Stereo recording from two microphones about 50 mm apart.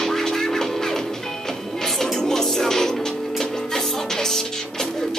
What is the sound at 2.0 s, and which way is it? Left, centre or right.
Music, centre.